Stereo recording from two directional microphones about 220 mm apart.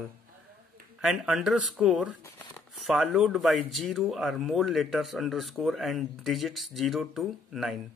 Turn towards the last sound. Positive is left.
turn(degrees=0)  # may be behind; listen again after turning